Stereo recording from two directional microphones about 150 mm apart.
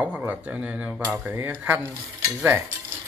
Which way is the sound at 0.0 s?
5° right (ahead or behind).